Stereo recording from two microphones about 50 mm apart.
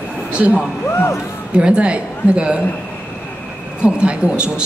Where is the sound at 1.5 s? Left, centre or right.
Centre.